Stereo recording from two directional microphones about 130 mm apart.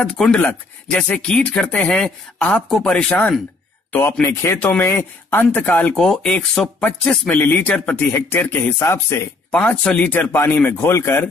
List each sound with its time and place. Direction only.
0.0 s speech: 5° left (ahead or behind)
3.9 s speech: 20° left (ahead or behind)
9.5 s speech: 10° left (ahead or behind)